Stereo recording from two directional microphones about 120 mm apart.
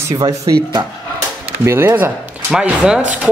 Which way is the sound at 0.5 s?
35° right (ahead or behind).